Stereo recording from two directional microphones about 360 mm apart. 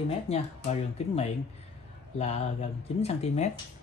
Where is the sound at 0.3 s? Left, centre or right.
Centre.